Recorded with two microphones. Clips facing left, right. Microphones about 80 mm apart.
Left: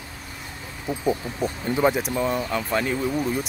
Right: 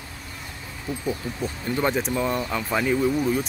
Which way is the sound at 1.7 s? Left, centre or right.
Centre.